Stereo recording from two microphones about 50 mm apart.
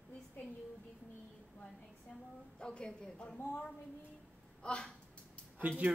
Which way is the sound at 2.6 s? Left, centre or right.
Centre.